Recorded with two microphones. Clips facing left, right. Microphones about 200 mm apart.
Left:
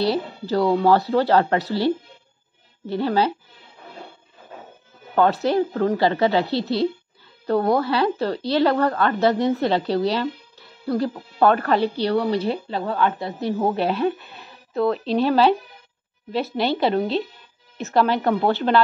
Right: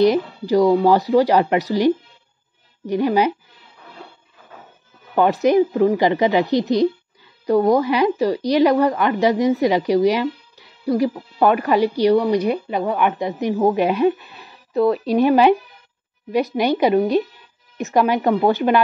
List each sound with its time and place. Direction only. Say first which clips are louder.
0.0 s speech: right 6 dB; 15° right (ahead or behind)
5.1 s speech: right 4 dB; 15° right (ahead or behind)
14.1 s a sound: even; centre (ahead or behind)
15.0 s speech: right 3 dB; 15° right (ahead or behind)